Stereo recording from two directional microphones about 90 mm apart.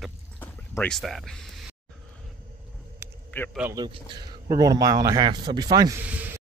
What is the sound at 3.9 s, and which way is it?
Speech, 65° right (ahead or behind).